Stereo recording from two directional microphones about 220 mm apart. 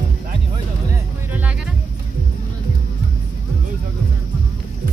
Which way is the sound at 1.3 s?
5° right (ahead or behind).